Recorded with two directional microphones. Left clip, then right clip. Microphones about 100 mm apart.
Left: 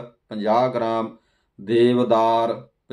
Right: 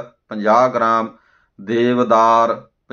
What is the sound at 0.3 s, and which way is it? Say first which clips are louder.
Speech: right 6 dB; 5° left (ahead or behind).